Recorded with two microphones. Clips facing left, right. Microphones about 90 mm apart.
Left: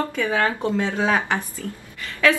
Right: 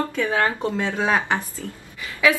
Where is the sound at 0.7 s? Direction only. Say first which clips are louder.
Left 2 dB; 15° left (ahead or behind).